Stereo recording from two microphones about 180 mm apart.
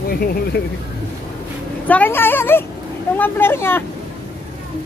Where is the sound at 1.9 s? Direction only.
10° left (ahead or behind).